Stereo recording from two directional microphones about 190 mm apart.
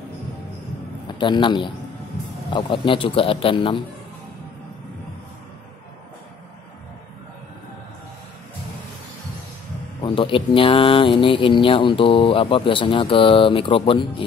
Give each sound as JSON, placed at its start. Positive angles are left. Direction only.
{"t": 1.0, "sound": "a man's voice", "side_deg": 25}
{"t": 10.0, "sound": "speech", "side_deg": 25}